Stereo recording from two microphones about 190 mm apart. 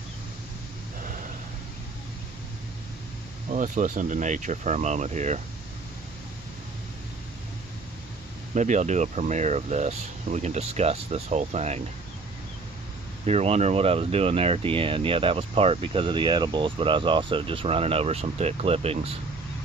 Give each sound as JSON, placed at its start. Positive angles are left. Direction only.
{"t": 3.4, "sound": "speech", "side_deg": -40}
{"t": 8.5, "sound": "speech", "side_deg": -40}
{"t": 13.2, "sound": "speech", "side_deg": -35}